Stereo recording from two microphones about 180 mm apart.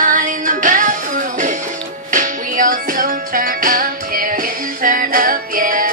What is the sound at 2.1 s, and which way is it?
Music, 50° right (ahead or behind).